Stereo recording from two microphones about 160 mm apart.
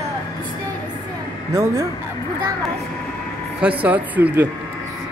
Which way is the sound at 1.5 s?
20° right (ahead or behind).